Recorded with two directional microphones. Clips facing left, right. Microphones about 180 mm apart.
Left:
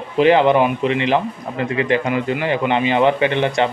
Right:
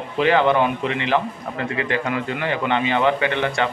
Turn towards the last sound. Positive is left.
turn(degrees=20)  # may be behind; listen again after turning